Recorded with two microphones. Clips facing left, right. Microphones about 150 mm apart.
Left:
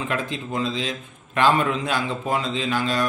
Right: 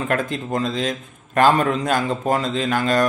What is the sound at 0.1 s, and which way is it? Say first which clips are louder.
A man's voice: right 4 dB; 50° right (ahead or behind).